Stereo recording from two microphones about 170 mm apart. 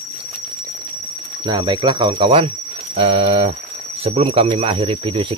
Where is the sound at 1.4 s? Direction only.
25° right (ahead or behind).